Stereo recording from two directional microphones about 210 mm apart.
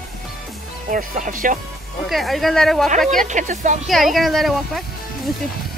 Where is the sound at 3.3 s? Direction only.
35° right (ahead or behind).